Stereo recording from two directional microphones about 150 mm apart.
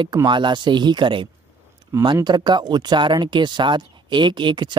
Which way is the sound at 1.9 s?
20° right (ahead or behind).